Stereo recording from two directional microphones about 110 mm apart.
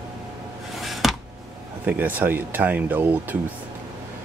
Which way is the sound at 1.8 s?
15° right (ahead or behind).